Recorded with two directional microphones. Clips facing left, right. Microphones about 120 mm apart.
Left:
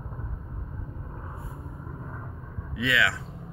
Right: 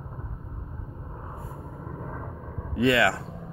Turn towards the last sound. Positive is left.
turn(degrees=-45)  # may be behind; listen again after turning